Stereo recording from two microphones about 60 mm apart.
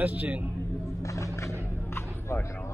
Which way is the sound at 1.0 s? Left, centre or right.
Left.